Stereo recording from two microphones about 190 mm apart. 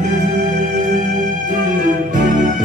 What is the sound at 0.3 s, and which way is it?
Music, 40° right (ahead or behind).